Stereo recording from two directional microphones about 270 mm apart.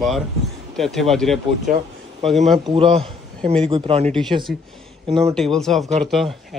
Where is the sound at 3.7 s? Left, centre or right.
Right.